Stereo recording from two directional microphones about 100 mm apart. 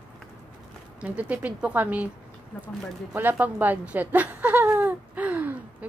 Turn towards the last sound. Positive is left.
turn(degrees=-15)  # may be behind; listen again after turning